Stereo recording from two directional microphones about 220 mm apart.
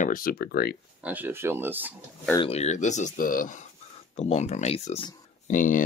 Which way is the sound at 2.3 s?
25° left (ahead or behind).